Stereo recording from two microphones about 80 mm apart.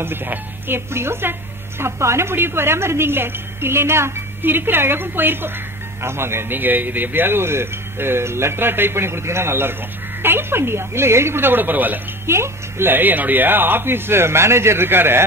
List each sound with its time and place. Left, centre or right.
0.0 s a woman's voice: right